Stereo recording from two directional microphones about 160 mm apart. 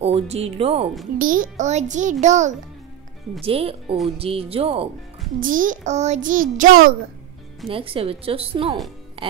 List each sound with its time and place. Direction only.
0.0 s a woman's voice: 40° right (ahead or behind)
1.1 s a child's voice: 60° right (ahead or behind); by 4.8 s 35° right (ahead or behind)
5.4 s a child's voice: 55° right (ahead or behind)
7.6 s a woman's voice: 35° right (ahead or behind)